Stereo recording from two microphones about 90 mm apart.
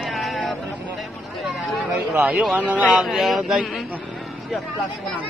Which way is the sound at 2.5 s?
15° right (ahead or behind).